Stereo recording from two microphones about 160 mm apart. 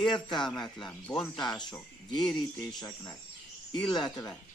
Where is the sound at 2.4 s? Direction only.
25° left (ahead or behind).